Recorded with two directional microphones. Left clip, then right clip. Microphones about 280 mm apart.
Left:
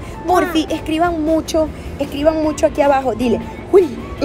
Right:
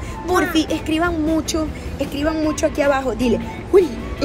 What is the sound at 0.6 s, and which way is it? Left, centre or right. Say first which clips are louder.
A woman's voice: left 2 dB; centre.